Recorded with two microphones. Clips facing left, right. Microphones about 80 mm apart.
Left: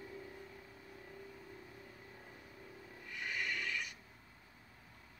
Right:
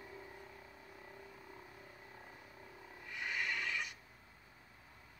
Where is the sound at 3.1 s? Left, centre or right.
Centre.